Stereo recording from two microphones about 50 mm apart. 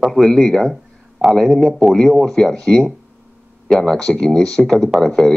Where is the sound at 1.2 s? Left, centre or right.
Centre.